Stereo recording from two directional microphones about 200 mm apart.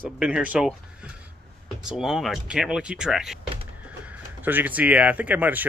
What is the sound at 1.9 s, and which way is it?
Speech, centre (ahead or behind).